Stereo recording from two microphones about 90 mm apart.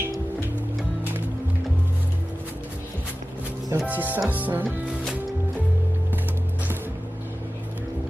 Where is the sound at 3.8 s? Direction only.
20° right (ahead or behind).